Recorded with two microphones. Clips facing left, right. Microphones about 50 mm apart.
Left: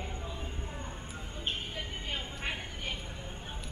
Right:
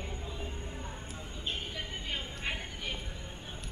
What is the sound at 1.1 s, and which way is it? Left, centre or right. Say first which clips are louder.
Vehicle: left 2 dB; left.